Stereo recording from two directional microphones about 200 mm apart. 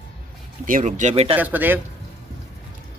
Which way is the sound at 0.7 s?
40° right (ahead or behind).